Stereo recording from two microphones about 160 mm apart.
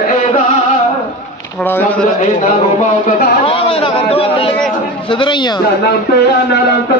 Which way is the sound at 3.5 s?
35° left (ahead or behind).